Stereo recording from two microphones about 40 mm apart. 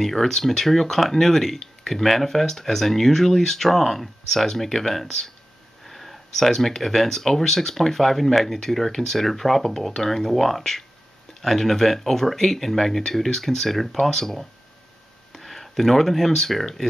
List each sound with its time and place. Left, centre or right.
0.0 s speech: centre